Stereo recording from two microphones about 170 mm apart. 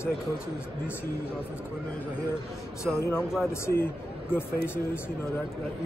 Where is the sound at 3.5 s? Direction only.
15° left (ahead or behind).